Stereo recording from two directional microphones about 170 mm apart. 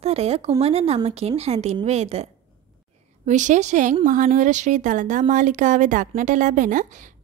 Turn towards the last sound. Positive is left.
turn(degrees=-50)  # may be behind; listen again after turning